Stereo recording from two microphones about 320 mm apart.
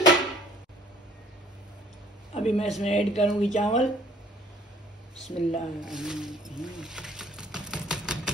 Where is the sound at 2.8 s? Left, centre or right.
Left.